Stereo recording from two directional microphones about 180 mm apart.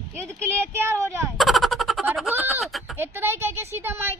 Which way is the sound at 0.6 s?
15° right (ahead or behind).